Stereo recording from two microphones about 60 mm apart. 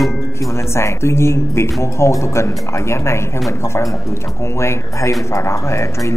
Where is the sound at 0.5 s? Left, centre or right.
Left.